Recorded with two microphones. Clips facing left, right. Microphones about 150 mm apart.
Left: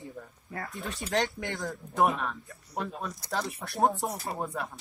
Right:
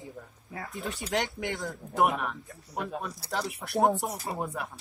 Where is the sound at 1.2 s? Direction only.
20° right (ahead or behind).